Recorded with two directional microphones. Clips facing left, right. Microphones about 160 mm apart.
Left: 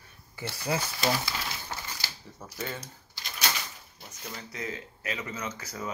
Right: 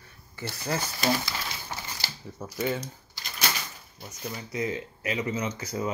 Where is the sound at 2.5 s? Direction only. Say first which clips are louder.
Right 8 dB; 15° right (ahead or behind).